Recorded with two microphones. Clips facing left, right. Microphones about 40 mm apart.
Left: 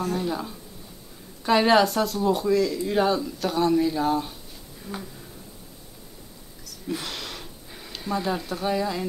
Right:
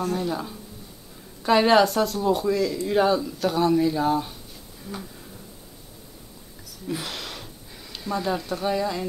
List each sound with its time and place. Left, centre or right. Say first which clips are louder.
0.0 s speech: right 1 dB; centre
6.9 s a sound: even; centre
7.9 s speech: even; centre